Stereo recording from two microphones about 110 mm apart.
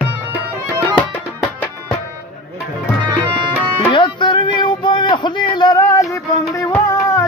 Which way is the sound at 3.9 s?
45° left (ahead or behind).